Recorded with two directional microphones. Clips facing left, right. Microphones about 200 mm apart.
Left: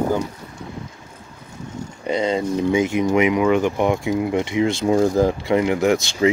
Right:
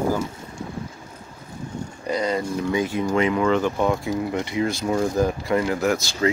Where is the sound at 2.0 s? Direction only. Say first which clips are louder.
Left 3 dB; 25° left (ahead or behind).